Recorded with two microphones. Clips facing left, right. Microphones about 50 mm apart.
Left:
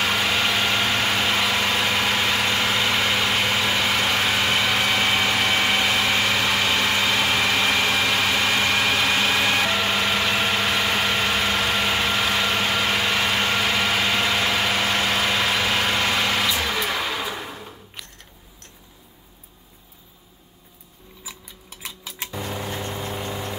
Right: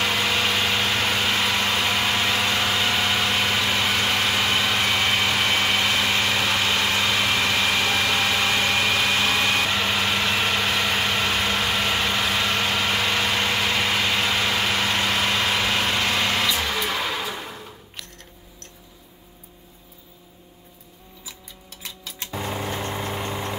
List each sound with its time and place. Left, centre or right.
0.0 s vehicle: centre
21.8 s tick-tock: centre
22.3 s a sound: right
22.8 s vehicle: right